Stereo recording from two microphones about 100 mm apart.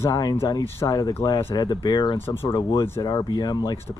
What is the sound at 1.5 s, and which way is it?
Speech, 45° left (ahead or behind).